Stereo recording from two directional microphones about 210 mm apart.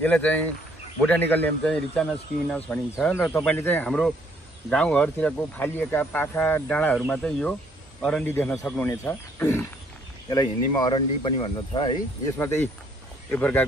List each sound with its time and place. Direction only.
0.0 s a man's voice: 5° left (ahead or behind)